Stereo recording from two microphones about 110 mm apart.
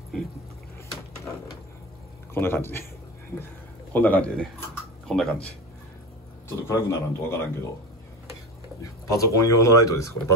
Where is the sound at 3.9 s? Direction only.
15° left (ahead or behind).